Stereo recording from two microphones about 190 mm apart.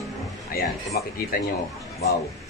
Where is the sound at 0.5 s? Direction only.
50° left (ahead or behind).